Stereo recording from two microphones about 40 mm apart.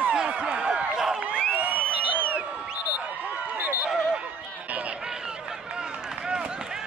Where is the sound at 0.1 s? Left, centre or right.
Right.